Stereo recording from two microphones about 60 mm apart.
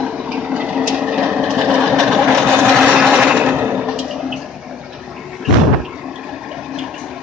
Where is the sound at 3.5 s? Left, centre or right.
Right.